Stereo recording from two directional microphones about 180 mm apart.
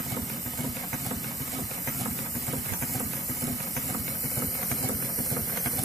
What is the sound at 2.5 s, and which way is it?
Engine, centre (ahead or behind).